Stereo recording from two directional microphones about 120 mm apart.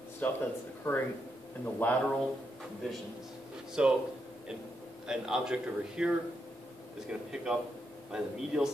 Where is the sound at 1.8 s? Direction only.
15° left (ahead or behind).